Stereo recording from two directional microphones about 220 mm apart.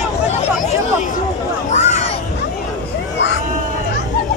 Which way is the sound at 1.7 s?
30° left (ahead or behind).